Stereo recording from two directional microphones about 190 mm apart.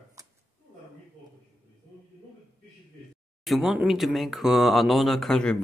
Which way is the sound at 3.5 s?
Centre (ahead or behind).